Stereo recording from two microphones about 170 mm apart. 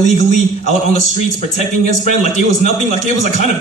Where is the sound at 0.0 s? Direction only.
45° left (ahead or behind).